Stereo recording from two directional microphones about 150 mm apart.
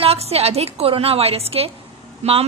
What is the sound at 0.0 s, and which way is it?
A woman's voice, 40° right (ahead or behind).